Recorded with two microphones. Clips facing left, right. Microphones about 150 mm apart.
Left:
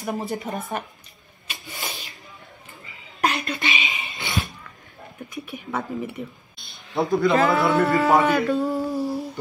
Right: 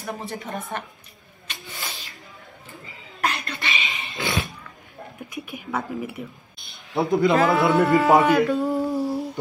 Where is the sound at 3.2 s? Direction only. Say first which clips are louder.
Left 3 dB; 20° left (ahead or behind).